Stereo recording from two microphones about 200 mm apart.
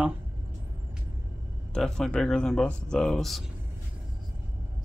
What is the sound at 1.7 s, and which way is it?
Speech, 5° left (ahead or behind).